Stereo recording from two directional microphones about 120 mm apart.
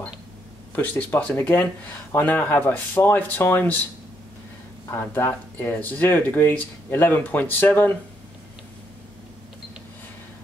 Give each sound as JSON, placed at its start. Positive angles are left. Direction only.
{"t": 0.7, "sound": "speech", "side_deg": 15}
{"t": 4.9, "sound": "speech", "side_deg": 15}